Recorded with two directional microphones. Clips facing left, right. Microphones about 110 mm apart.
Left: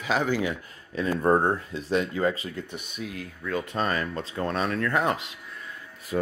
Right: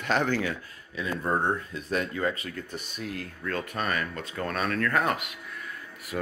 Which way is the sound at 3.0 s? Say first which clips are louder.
Even; 5° left (ahead or behind).